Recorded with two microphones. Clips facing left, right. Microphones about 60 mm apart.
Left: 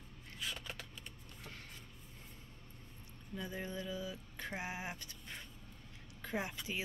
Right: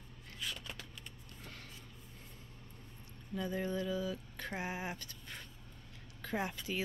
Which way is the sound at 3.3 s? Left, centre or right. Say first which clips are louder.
Right 6 dB; centre.